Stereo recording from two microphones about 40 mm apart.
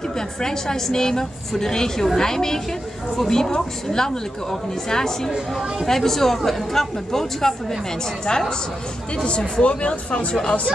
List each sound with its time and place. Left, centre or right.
0.4 s a woman's voice: centre